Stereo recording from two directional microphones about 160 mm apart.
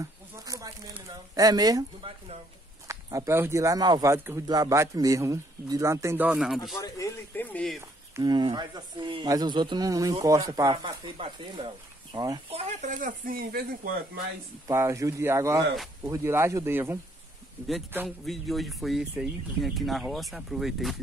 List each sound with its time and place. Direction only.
0.0 s a sound: 20° right (ahead or behind)
2.9 s speech: 20° right (ahead or behind); by 6.8 s centre (ahead or behind)
6.8 s speech: 20° left (ahead or behind)
8.2 s speech: 25° right (ahead or behind)
10.7 s speech: 30° right (ahead or behind)
12.4 s speech: 40° right (ahead or behind); by 13.9 s 70° right (ahead or behind)
14.7 s speech: 15° right (ahead or behind)
17.9 s speech: centre (ahead or behind)